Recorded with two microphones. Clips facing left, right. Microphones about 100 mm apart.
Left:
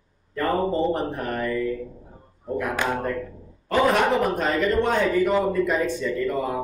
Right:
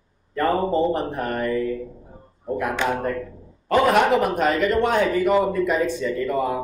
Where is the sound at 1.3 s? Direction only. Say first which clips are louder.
Right 3 dB; 25° right (ahead or behind).